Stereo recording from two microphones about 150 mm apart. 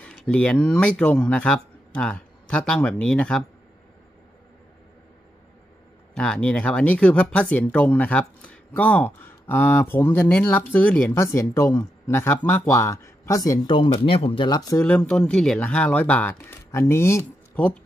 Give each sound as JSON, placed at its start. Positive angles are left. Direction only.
{"t": 0.0, "sound": "speech", "side_deg": 5}
{"t": 6.1, "sound": "speech", "side_deg": 5}
{"t": 14.8, "sound": "speech", "side_deg": 10}